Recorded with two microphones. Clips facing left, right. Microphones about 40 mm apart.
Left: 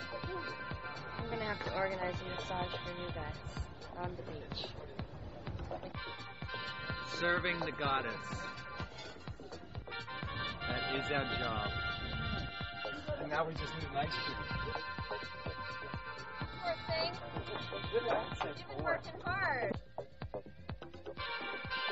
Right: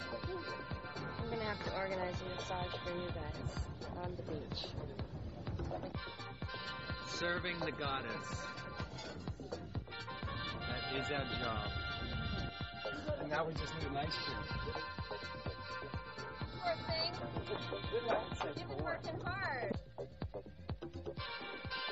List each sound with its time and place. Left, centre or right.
0.1 s music: left
6.5 s music: left
10.2 s music: left
13.7 s speech: centre; by 15.1 s left
16.6 s music: left
21.5 s music: left